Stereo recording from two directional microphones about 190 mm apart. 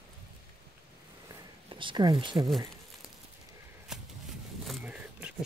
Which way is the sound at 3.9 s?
5° right (ahead or behind).